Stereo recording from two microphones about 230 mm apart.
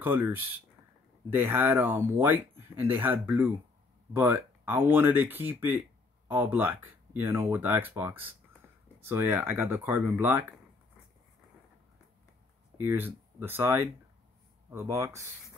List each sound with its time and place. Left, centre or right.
0.0 s speech: centre
12.8 s speech: centre